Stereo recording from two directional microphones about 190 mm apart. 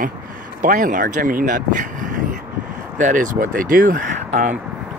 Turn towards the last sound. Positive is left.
turn(degrees=-45)  # may be behind; listen again after turning